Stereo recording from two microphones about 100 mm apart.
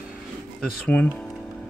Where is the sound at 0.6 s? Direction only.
10° left (ahead or behind).